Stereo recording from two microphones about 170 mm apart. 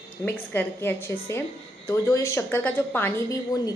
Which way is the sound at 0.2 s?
15° left (ahead or behind).